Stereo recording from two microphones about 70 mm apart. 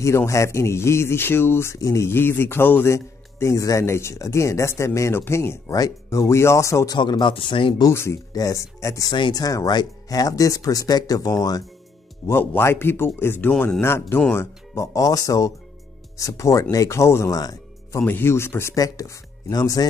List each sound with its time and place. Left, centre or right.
0.0 s speech: left
1.8 s speech: left
2.0 s speech: left
2.9 s speech: left
5.7 s speech: left
6.9 s a man's voice: left
7.9 s speech: left
8.3 s speech: left
9.7 s speech: left
12.3 s speech: left
15.0 s speech: left
18.0 s speech: left
18.3 s speech: left
18.8 s speech: left